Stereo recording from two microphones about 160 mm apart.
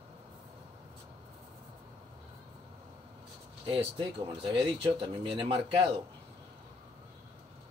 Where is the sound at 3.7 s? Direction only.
35° right (ahead or behind).